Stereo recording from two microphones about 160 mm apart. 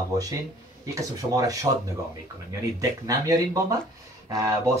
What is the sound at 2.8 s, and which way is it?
Speech, 20° right (ahead or behind).